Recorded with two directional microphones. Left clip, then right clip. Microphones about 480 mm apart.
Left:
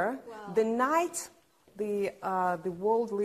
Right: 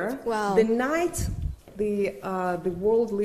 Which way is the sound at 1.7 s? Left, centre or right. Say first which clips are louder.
Right 5 dB; left.